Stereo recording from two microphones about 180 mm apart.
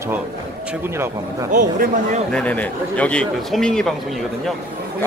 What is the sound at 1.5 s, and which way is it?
Speech, 45° right (ahead or behind).